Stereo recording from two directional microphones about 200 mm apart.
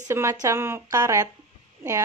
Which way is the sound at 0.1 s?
15° right (ahead or behind).